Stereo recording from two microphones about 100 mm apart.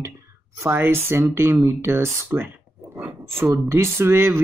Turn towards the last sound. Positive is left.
turn(degrees=-25)  # may be behind; listen again after turning